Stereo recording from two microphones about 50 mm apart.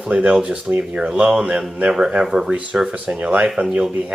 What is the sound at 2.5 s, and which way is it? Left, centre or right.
Speech, right.